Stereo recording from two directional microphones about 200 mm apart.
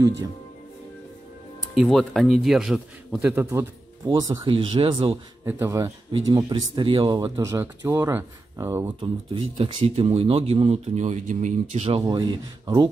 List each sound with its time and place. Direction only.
1.8 s a man's voice: centre (ahead or behind); by 5.1 s 25° right (ahead or behind)
5.4 s a man's voice: 15° right (ahead or behind)
9.0 s speech: 25° right (ahead or behind)
12.0 s speech: 20° right (ahead or behind)